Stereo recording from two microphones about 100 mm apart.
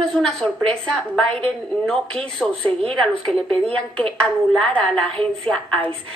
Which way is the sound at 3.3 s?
10° left (ahead or behind).